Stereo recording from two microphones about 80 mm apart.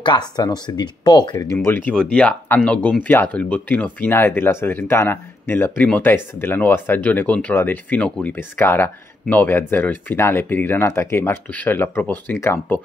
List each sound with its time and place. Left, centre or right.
0.0 s speech: left
1.7 s speech: left
2.0 s speech: centre